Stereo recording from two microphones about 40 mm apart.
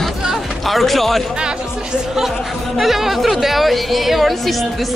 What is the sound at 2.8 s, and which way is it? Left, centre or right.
Speech, centre.